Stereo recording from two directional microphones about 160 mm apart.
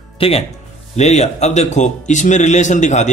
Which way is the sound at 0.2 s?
35° left (ahead or behind).